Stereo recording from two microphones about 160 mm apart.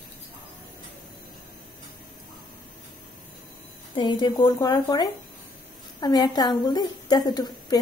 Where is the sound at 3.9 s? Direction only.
30° left (ahead or behind).